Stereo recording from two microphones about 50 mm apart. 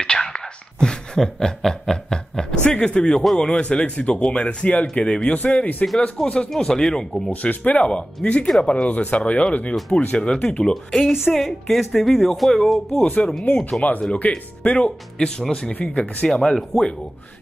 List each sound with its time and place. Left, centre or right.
0.0 s speech: centre
6.2 s speech: centre
7.4 s speech: left
7.8 s speech: centre
10.6 s speech: centre
13.0 s speech: left
13.6 s speech: centre
14.2 s speech: left; by 16.9 s centre